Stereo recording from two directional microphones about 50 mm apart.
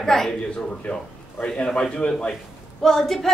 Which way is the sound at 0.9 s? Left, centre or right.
Left.